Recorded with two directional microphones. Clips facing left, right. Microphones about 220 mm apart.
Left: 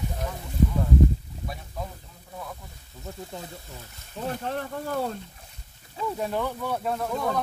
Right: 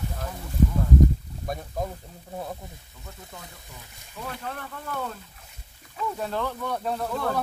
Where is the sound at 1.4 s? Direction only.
45° right (ahead or behind).